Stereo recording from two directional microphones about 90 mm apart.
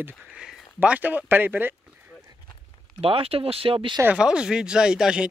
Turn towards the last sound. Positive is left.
turn(degrees=-10)  # may be behind; listen again after turning